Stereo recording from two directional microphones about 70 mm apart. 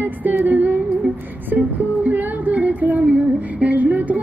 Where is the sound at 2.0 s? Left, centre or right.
Right.